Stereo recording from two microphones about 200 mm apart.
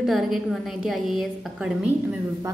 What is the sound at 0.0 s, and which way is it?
A woman's voice, centre (ahead or behind).